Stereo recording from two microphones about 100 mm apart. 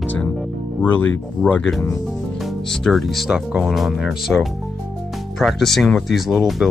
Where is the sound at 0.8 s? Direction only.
20° left (ahead or behind).